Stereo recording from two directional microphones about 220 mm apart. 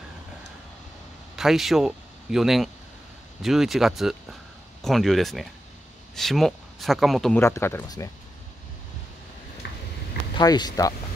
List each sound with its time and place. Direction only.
1.3 s speech: centre (ahead or behind)
10.3 s speech: 20° left (ahead or behind)